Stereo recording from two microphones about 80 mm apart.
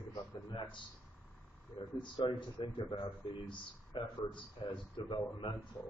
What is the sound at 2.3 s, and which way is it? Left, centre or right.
Speech, left.